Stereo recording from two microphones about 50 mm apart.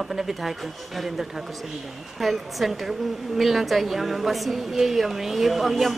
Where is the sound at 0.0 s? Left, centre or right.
Centre.